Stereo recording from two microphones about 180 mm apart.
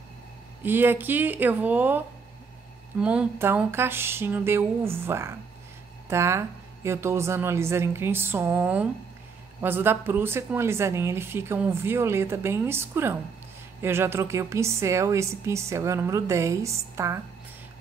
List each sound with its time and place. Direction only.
0.6 s a woman's voice: 10° right (ahead or behind)